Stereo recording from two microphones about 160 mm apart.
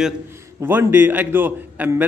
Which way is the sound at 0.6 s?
15° right (ahead or behind).